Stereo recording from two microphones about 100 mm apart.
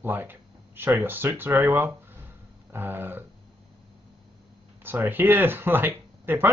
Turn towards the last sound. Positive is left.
turn(degrees=-20)  # may be behind; listen again after turning